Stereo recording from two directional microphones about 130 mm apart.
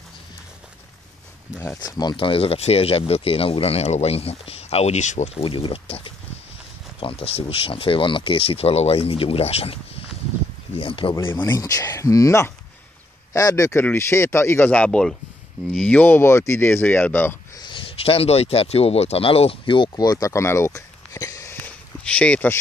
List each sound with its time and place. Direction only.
1.8 s speech: 30° left (ahead or behind); by 5.4 s 60° left (ahead or behind)
5.4 s speech: 45° left (ahead or behind)
11.3 s speech: 30° left (ahead or behind); by 17.4 s 15° left (ahead or behind)
17.6 s speech: 40° left (ahead or behind); by 22.6 s 10° left (ahead or behind)